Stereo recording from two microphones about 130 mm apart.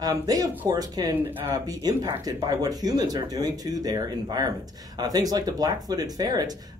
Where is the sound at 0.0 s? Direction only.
30° right (ahead or behind).